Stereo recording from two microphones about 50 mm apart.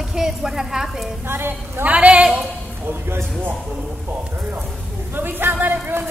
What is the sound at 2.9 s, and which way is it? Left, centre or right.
Speech, right.